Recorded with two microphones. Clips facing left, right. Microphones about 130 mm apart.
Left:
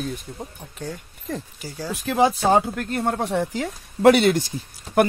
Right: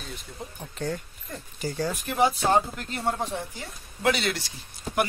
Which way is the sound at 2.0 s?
90° left.